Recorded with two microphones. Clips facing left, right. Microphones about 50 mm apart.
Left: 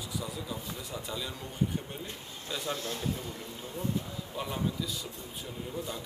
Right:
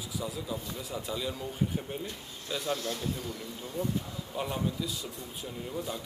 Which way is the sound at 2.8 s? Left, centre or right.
Left.